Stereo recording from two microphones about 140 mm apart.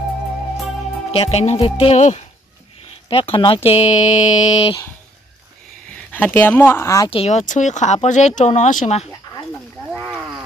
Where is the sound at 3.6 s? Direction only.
50° left (ahead or behind).